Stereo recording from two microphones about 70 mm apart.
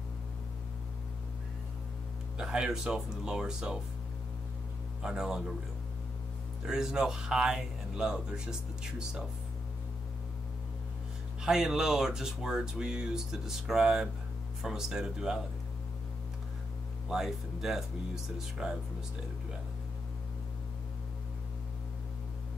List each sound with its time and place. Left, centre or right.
2.3 s speech: centre
5.0 s speech: centre
6.6 s speech: centre
11.4 s speech: centre
17.1 s speech: centre